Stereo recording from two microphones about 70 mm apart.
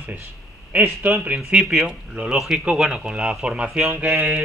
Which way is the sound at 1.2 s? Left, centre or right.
Centre.